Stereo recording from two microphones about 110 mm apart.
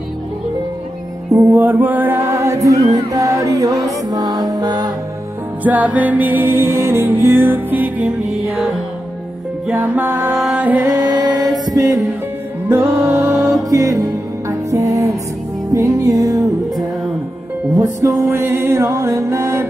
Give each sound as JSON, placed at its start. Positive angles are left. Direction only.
{"t": 1.3, "sound": "music", "side_deg": -15}
{"t": 5.6, "sound": "music", "side_deg": -15}
{"t": 9.7, "sound": "music", "side_deg": -15}
{"t": 10.9, "sound": "music", "side_deg": -40}
{"t": 12.6, "sound": "music", "side_deg": -20}
{"t": 17.7, "sound": "music", "side_deg": -30}